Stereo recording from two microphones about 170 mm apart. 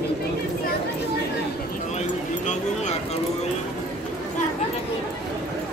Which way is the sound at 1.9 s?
45° left (ahead or behind).